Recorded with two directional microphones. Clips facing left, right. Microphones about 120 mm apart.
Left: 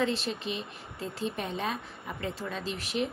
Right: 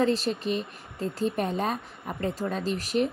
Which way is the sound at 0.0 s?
40° right (ahead or behind).